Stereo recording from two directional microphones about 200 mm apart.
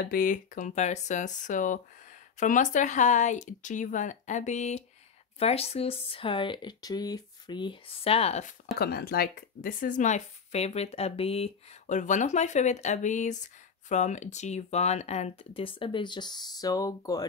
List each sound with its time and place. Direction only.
0.0 s speech: 45° left (ahead or behind)
8.7 s speech: 50° left (ahead or behind); by 17.3 s 15° left (ahead or behind)